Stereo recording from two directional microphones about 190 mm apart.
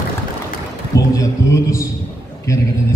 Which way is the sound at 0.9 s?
15° left (ahead or behind).